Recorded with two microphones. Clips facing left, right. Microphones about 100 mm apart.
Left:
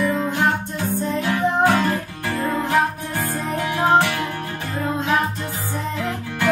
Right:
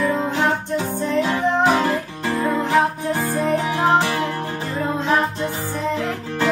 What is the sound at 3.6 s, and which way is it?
Music, 30° right (ahead or behind).